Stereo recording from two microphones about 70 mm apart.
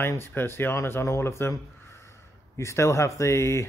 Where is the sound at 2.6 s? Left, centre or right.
Left.